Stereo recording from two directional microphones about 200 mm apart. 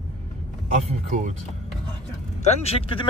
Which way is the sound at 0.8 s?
35° right (ahead or behind).